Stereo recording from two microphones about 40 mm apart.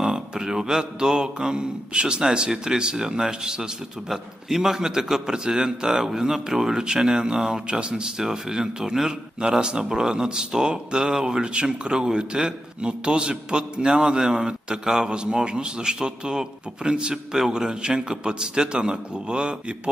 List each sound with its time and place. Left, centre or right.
0.0 s mantra: centre
2.3 s a man's voice: centre